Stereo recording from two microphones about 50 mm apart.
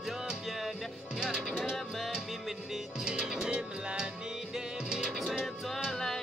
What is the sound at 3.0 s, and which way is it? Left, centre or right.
Music, centre.